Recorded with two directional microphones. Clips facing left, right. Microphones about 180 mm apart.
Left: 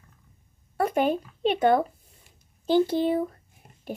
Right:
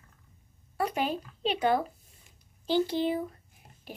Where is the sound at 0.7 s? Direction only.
50° left (ahead or behind).